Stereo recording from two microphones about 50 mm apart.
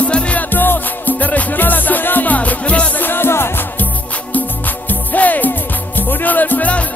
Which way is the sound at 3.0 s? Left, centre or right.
Left.